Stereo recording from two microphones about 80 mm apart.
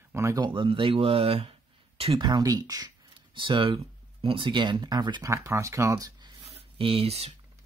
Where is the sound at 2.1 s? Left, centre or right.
Right.